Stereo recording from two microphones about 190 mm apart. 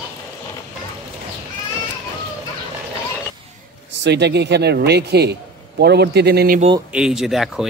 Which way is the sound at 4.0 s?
65° right (ahead or behind).